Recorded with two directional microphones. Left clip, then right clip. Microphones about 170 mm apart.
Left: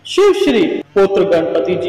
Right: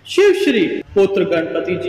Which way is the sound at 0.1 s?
25° left (ahead or behind).